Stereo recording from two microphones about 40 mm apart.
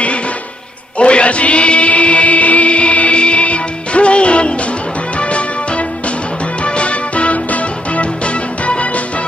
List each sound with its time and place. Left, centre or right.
0.9 s music: left